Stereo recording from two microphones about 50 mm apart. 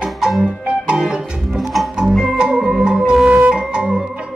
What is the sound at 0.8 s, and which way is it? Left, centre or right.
Music, centre.